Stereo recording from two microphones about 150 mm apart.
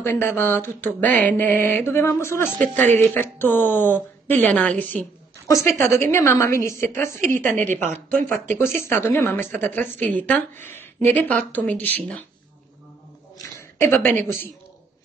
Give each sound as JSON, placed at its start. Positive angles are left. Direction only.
{"t": 0.0, "sound": "a woman's voice", "side_deg": 15}
{"t": 7.5, "sound": "speech", "side_deg": -60}
{"t": 8.3, "sound": "a woman's voice", "side_deg": 15}
{"t": 13.6, "sound": "a woman's voice", "side_deg": 15}